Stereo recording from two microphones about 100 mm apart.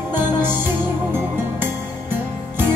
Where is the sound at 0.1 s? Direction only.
20° right (ahead or behind).